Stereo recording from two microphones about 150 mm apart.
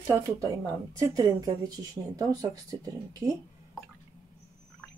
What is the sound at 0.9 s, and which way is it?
Speech, 20° right (ahead or behind).